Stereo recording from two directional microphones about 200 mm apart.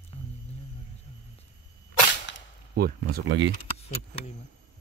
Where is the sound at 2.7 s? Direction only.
50° right (ahead or behind).